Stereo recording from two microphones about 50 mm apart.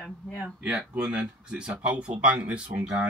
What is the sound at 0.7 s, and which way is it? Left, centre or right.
Speech, right.